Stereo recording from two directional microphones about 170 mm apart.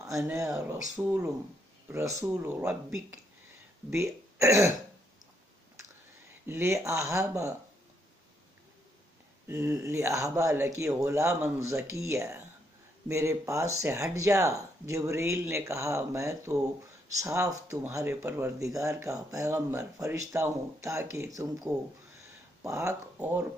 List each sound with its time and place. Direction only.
0.0 s speech: 15° right (ahead or behind)
6.4 s speech: 15° right (ahead or behind)
9.5 s speech: 15° right (ahead or behind)
22.6 s speech: 15° right (ahead or behind)